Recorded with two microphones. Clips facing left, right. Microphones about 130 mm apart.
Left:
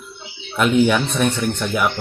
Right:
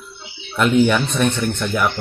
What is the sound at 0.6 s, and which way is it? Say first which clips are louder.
Speech: even; 5° left (ahead or behind).